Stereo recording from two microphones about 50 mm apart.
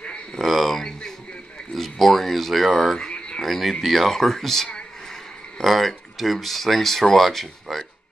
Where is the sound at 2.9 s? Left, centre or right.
Centre.